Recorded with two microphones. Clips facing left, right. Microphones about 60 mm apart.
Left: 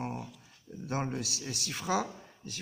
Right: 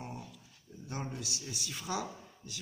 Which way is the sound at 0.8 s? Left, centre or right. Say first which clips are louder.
Left 6 dB; left.